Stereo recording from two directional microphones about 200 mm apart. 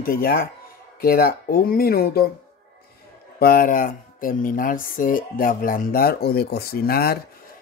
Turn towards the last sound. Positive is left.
turn(degrees=50)  # may be behind; listen again after turning